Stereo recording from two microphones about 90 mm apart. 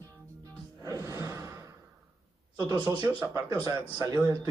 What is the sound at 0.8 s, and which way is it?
Music, 35° right (ahead or behind).